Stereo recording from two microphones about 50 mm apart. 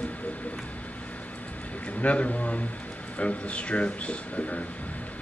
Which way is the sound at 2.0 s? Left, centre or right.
Left.